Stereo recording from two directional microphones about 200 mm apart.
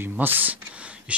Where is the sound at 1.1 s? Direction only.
5° right (ahead or behind).